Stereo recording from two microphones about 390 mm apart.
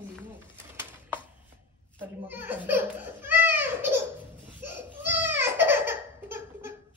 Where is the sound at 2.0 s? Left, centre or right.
Centre.